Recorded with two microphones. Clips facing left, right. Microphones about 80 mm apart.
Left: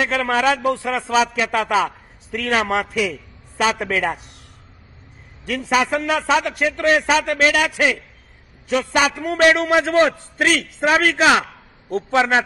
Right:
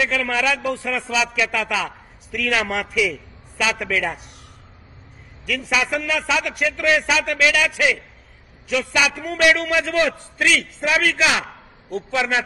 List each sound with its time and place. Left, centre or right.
0.0 s a man's voice: left
5.4 s a man's voice: left